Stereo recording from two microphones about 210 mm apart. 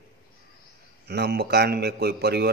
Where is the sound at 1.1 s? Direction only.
50° right (ahead or behind).